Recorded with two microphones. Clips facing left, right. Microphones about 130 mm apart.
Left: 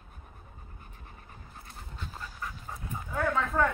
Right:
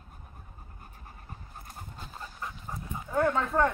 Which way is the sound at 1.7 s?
45° right (ahead or behind).